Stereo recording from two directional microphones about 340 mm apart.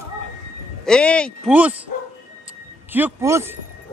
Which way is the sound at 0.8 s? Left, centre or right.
Centre.